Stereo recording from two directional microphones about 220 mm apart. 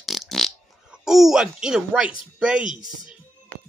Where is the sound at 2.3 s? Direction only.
5° right (ahead or behind).